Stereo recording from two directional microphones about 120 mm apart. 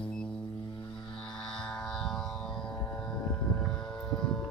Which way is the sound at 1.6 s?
5° left (ahead or behind).